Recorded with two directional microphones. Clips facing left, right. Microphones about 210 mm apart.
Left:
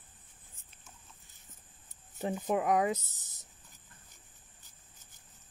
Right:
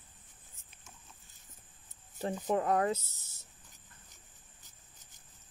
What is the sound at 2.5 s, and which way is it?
Speech, 15° left (ahead or behind).